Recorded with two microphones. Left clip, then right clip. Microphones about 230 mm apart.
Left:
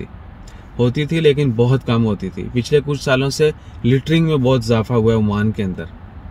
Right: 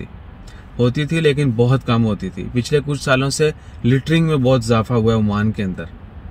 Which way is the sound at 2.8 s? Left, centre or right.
Right.